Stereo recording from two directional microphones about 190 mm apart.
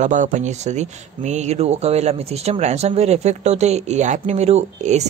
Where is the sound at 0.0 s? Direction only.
40° right (ahead or behind).